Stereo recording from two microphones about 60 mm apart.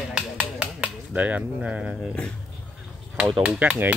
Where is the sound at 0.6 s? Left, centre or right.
Right.